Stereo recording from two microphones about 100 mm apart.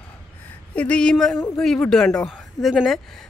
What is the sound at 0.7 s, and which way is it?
Speech, 10° left (ahead or behind).